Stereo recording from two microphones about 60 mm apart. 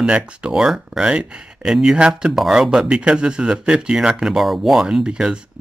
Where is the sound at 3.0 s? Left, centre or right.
Centre.